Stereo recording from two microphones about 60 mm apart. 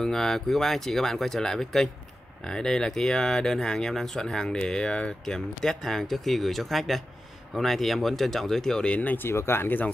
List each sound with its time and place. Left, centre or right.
0.0 s speech: centre
9.0 s speech: left
9.3 s speech: left